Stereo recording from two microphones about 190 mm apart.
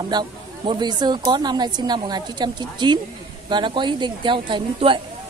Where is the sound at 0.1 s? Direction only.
20° right (ahead or behind).